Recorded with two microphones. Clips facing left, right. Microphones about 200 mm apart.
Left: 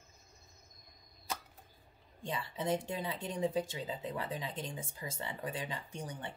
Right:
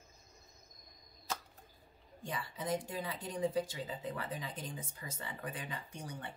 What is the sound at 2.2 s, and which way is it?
Speech, 25° left (ahead or behind).